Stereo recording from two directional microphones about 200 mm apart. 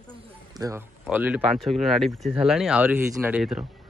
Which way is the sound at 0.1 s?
15° right (ahead or behind).